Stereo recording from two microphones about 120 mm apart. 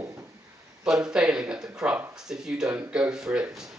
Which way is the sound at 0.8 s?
5° right (ahead or behind).